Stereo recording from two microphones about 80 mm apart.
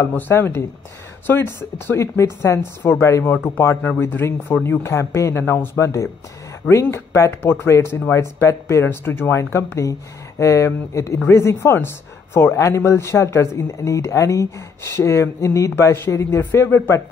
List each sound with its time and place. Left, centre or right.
0.3 s speech: left
8.8 s speech: left